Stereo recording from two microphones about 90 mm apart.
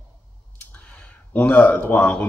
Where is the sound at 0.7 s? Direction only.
15° left (ahead or behind).